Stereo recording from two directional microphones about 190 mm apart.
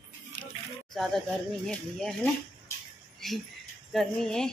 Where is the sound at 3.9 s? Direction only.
5° left (ahead or behind).